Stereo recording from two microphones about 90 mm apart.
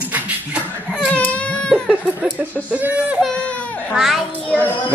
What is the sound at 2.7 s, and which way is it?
Speech, 15° right (ahead or behind).